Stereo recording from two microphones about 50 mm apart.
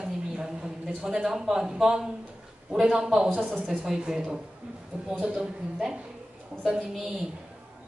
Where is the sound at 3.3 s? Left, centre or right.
Right.